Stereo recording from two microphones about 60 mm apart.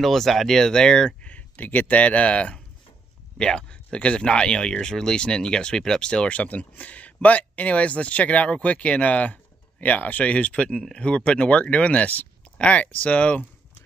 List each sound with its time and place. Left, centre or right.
0.0 s speech: centre; by 13.5 s left